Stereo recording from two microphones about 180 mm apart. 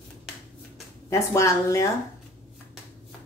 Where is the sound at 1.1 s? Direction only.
15° left (ahead or behind).